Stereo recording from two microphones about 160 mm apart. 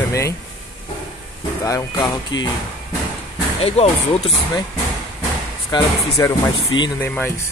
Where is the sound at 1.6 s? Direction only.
20° left (ahead or behind).